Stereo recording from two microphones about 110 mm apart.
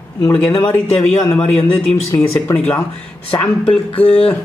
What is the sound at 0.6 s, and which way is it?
Speech, 10° left (ahead or behind).